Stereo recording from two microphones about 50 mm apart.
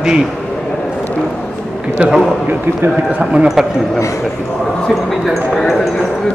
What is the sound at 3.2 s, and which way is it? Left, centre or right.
Speech, centre.